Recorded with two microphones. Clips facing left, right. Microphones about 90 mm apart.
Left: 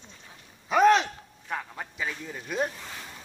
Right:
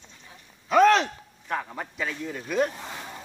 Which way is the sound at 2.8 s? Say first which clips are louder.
Right 4 dB; 20° right (ahead or behind).